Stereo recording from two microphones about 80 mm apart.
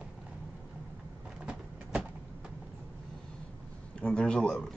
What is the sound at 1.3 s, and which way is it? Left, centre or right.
Vehicle, centre.